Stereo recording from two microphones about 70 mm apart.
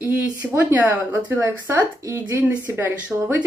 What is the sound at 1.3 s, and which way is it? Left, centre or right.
Speech, right.